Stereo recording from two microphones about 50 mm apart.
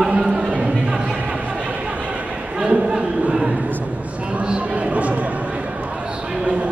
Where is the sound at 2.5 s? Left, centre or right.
Centre.